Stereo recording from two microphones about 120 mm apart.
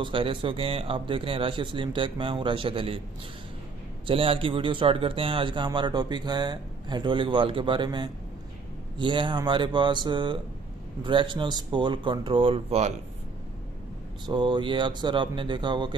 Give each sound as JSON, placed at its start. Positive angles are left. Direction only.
{"t": 0.0, "sound": "speech", "side_deg": -45}
{"t": 4.1, "sound": "speech", "side_deg": -50}
{"t": 14.2, "sound": "speech", "side_deg": -40}